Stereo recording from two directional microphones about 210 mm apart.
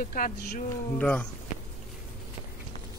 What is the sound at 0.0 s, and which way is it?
Speech, 40° left (ahead or behind).